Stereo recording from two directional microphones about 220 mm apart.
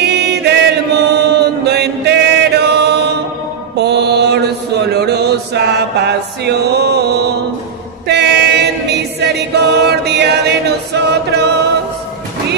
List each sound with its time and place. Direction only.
0.0 s chant: 50° right (ahead or behind)
3.7 s music: 50° right (ahead or behind)
4.8 s chant: 50° right (ahead or behind)
8.1 s choir: 50° right (ahead or behind)
11.0 s chant: 50° right (ahead or behind)